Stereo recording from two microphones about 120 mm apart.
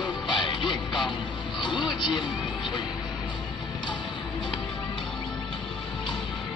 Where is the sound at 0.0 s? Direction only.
40° left (ahead or behind).